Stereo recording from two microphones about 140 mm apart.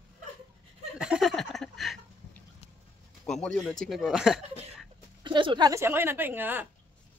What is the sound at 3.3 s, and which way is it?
Speech, 5° left (ahead or behind).